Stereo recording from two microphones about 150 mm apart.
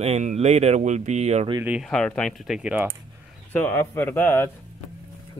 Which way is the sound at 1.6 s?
10° right (ahead or behind).